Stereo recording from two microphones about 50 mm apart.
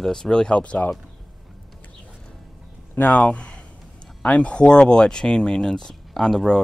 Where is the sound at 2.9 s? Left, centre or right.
Left.